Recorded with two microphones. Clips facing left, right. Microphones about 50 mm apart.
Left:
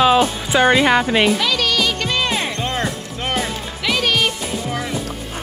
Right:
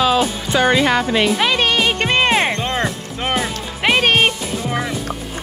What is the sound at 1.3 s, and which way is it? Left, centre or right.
Music, right.